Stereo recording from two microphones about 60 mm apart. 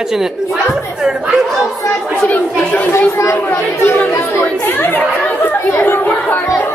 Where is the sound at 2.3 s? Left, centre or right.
Left.